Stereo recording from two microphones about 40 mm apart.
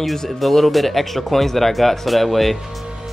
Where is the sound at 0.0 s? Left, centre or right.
Centre.